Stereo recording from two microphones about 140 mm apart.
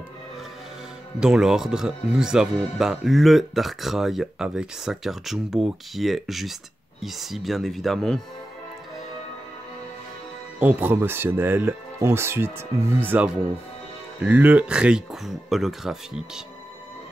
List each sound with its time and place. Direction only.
1.2 s speech: 5° right (ahead or behind)
10.6 s speech: 15° right (ahead or behind)